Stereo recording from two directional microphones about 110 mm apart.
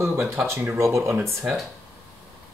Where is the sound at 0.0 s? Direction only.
20° right (ahead or behind).